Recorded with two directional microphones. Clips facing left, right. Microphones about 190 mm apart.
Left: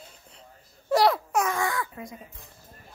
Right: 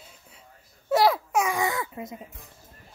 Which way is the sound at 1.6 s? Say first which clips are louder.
Right 1 dB; 20° right (ahead or behind).